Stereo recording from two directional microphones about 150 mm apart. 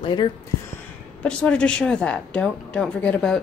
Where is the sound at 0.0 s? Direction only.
30° left (ahead or behind).